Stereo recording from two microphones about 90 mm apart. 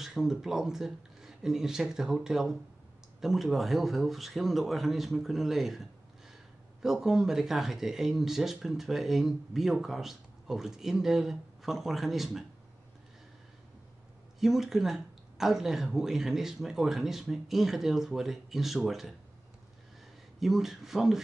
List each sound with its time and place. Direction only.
0.0 s speech: 5° right (ahead or behind)
14.4 s speech: 5° right (ahead or behind)
20.3 s speech: centre (ahead or behind)